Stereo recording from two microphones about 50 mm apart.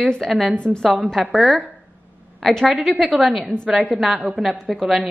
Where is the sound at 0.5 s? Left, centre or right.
Left.